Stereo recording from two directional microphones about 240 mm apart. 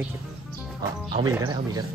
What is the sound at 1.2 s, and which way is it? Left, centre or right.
Speech, centre.